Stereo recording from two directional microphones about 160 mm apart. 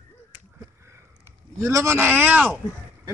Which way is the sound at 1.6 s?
20° right (ahead or behind).